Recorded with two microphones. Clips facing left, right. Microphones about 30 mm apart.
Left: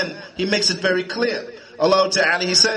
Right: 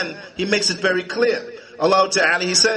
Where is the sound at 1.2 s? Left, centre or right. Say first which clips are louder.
Right 3 dB; centre.